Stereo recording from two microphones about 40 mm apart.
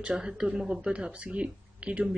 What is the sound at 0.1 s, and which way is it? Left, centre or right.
Speech, centre.